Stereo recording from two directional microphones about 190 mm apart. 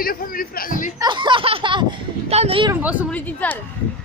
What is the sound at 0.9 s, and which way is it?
Speech, 25° right (ahead or behind).